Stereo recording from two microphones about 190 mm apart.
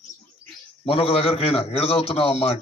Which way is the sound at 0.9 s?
30° left (ahead or behind).